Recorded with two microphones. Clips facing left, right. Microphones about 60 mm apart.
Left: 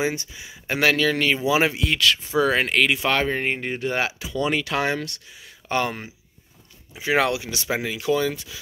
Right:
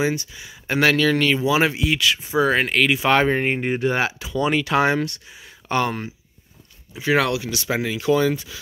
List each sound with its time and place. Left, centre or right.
0.1 s speech: centre
0.7 s speech: centre
1.7 s speech: centre
3.1 s speech: right
3.9 s speech: centre
5.7 s speech: centre
7.0 s speech: centre
7.7 s speech: centre